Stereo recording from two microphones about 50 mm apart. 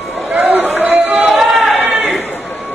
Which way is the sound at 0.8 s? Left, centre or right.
Right.